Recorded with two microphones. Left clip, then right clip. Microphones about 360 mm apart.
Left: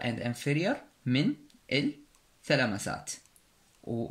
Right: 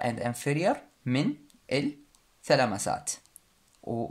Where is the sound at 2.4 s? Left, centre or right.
Centre.